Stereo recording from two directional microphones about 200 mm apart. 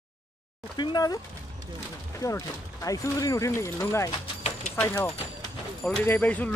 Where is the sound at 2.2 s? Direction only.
15° left (ahead or behind).